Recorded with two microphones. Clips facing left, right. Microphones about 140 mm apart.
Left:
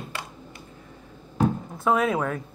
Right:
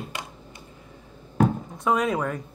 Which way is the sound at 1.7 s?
Centre (ahead or behind).